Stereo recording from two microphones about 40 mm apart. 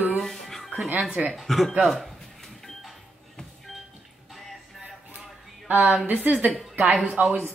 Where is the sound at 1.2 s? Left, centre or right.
Right.